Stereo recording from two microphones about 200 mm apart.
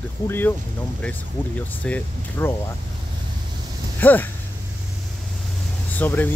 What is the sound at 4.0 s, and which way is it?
Speech, 10° left (ahead or behind).